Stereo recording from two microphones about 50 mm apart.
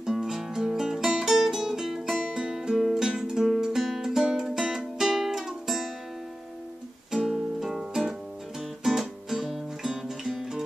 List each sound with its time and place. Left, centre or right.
0.0 s music: centre
7.1 s music: centre